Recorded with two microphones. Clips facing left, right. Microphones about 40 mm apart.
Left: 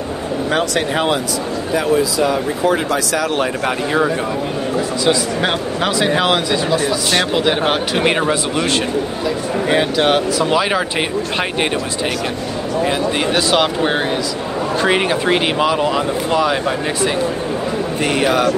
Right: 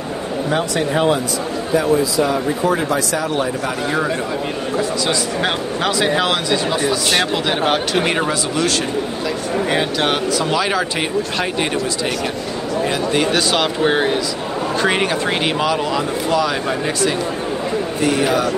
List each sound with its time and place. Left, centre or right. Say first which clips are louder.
0.5 s speech: left 1 dB; left
2.9 s speech: left 1 dB; left
5.0 s speech: left 3 dB; centre
6.8 s speech: even; centre
7.3 s speech: left 2 dB; centre
8.3 s speech: left 2 dB; left
9.7 s speech: left 5 dB; centre
10.5 s speech: left 2 dB; centre
12.8 s speech: even; centre
18.0 s a man's voice: left 1 dB; left